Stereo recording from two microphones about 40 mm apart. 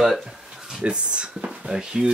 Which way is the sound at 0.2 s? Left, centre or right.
Centre.